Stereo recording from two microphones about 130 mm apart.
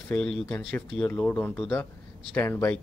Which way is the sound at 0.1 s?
5° left (ahead or behind).